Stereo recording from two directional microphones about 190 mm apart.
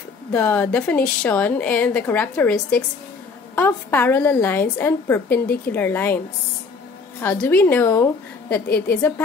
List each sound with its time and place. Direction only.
0.3 s a woman's voice: 10° left (ahead or behind)
7.2 s a woman's voice: 10° left (ahead or behind)
8.6 s a woman's voice: 55° left (ahead or behind)